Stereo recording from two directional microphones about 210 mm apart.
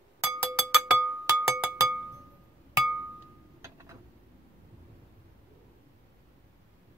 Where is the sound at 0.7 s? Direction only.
5° right (ahead or behind).